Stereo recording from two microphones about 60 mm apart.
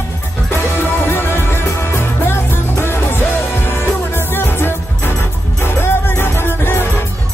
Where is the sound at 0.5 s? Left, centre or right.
Left.